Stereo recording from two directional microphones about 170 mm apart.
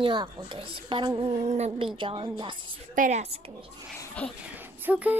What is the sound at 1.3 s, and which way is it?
A woman's voice, 40° right (ahead or behind).